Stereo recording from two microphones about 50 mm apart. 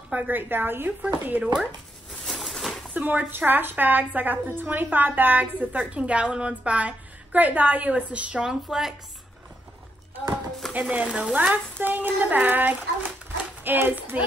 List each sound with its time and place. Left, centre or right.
0.3 s a woman's voice: right
2.4 s a sound: centre
2.9 s a woman's voice: right
8.5 s speech: centre
10.7 s a woman's voice: right
11.3 s a child's voice: right